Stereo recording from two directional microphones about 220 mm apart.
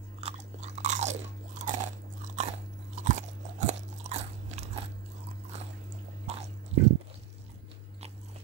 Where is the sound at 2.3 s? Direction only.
30° right (ahead or behind).